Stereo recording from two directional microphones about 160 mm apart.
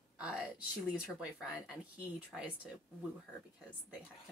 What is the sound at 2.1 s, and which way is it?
Speech, 10° right (ahead or behind).